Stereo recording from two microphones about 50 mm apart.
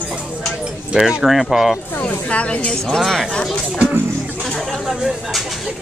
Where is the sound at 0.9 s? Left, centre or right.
Centre.